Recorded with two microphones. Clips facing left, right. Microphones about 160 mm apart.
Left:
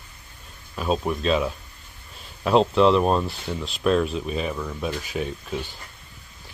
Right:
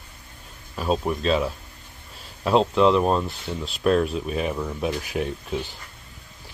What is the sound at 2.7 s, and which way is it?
Speech, 15° right (ahead or behind).